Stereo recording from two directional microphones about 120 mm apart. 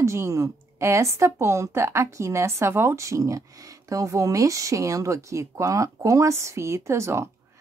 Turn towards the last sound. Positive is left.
turn(degrees=-25)  # may be behind; listen again after turning